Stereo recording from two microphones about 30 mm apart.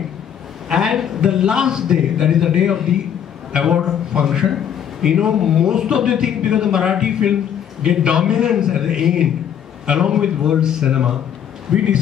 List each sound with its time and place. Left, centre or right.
0.7 s a man's voice: centre